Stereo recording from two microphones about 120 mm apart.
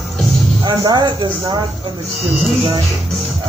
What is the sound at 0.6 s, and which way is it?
Speech, 40° right (ahead or behind).